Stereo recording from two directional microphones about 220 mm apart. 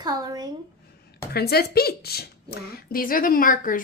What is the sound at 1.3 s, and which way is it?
Speech, 45° left (ahead or behind).